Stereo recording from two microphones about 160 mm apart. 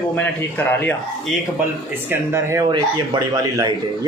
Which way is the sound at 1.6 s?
15° right (ahead or behind).